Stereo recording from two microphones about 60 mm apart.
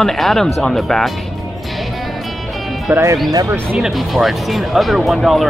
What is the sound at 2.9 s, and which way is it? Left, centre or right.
Speech, right.